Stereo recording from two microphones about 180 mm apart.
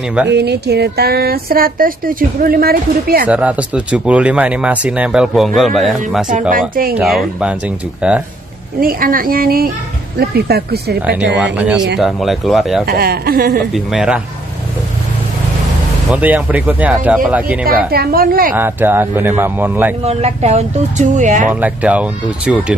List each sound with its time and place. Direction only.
0.3 s speech: 65° right (ahead or behind)
3.3 s speech: 5° right (ahead or behind)
6.7 s speech: 55° right (ahead or behind)
7.0 s speech: 5° right (ahead or behind)
8.7 s speech: 55° right (ahead or behind)
11.0 s speech: 10° right (ahead or behind)
12.8 s speech: 55° right (ahead or behind)
13.7 s speech: centre (ahead or behind)
16.1 s speech: 10° right (ahead or behind)
17.9 s speech: 55° right (ahead or behind)
18.5 s speech: 10° right (ahead or behind)
20.1 s speech: 35° right (ahead or behind)
21.5 s speech: 10° right (ahead or behind)